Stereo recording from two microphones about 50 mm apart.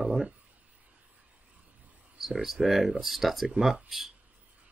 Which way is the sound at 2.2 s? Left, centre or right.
Centre.